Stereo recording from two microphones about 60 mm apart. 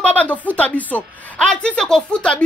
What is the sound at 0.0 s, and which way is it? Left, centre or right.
Speech, left.